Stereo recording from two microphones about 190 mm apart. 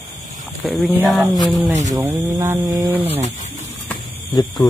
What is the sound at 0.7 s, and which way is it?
Speech, centre (ahead or behind).